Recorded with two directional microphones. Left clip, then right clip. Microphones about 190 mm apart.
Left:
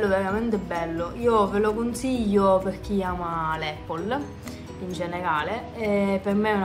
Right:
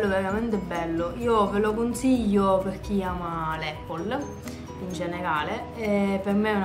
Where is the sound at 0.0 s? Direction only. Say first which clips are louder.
Left 2 dB; centre (ahead or behind).